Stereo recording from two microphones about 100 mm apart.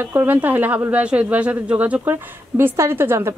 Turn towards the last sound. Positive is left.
turn(degrees=-25)  # may be behind; listen again after turning